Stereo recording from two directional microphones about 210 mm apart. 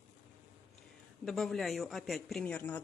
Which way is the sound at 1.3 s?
Centre (ahead or behind).